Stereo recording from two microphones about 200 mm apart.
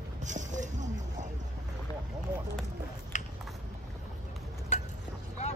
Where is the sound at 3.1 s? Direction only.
40° left (ahead or behind).